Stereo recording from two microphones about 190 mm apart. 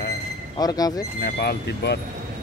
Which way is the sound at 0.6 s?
20° left (ahead or behind).